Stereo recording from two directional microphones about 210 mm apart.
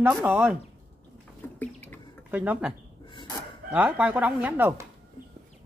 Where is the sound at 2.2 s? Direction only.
10° right (ahead or behind).